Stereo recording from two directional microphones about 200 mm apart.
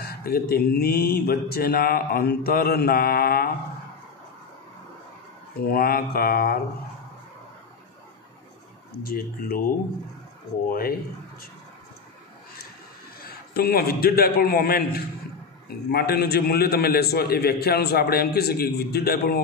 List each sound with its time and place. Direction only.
0.0 s a man's voice: 50° left (ahead or behind)
5.7 s a man's voice: 50° left (ahead or behind)
9.0 s a man's voice: 50° left (ahead or behind)
10.7 s a man's voice: 50° left (ahead or behind)
13.2 s a man's voice: 50° left (ahead or behind)